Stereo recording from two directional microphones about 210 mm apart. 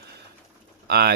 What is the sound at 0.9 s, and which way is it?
Speech, 50° right (ahead or behind).